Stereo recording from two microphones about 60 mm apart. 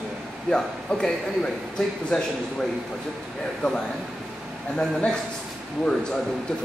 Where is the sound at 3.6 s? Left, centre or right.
Centre.